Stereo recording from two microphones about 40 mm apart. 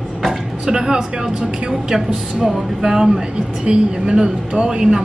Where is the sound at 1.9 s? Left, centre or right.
Centre.